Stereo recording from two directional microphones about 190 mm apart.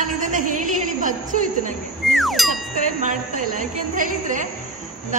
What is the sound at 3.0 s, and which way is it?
A woman's voice, 40° right (ahead or behind).